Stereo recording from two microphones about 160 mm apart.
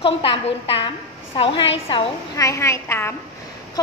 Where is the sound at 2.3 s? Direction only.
20° left (ahead or behind).